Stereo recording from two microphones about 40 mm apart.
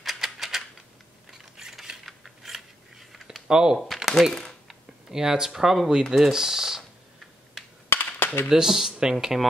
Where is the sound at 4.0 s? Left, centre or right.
Centre.